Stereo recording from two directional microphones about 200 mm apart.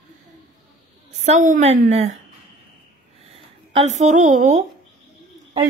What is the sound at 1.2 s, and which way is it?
Speech, 40° right (ahead or behind).